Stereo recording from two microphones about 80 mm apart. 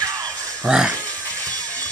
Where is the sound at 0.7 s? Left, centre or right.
Centre.